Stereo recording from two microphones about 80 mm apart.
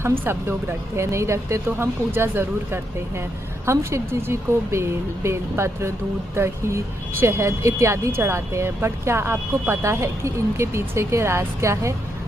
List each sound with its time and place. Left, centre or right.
0.2 s speech: right